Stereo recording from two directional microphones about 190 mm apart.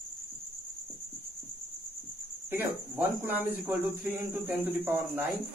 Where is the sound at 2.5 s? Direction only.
10° right (ahead or behind).